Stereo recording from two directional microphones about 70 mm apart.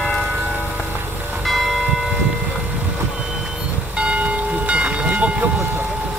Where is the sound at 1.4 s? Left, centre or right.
Centre.